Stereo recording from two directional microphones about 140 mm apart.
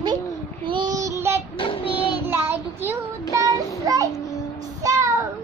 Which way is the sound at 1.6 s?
40° left (ahead or behind).